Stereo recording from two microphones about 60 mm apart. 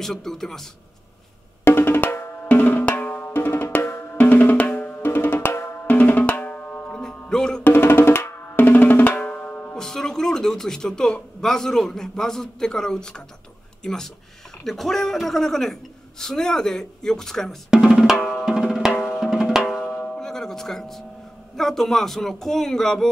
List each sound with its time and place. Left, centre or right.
0.0 s a woman's voice: centre
1.6 s drum: left
6.9 s music: centre
7.6 s drum: left
9.8 s a woman's voice: centre
17.6 s drum: centre
20.0 s a sound: centre
21.5 s speech: centre